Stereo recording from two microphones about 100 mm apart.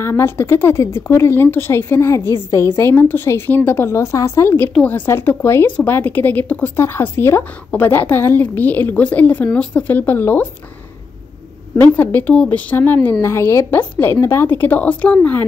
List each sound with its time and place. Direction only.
0.0 s a woman's voice: 25° left (ahead or behind)
11.8 s a woman's voice: 15° left (ahead or behind)